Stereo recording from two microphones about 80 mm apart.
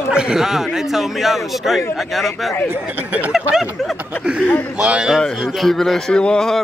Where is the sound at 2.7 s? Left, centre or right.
Right.